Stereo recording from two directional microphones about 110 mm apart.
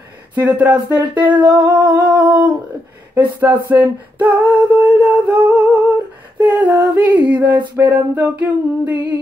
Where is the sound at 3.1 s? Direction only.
15° right (ahead or behind).